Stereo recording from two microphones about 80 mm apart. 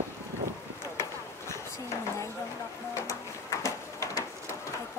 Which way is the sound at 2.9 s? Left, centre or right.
Left.